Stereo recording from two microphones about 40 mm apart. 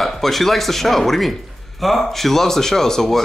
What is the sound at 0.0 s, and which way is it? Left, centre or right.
Speech, centre.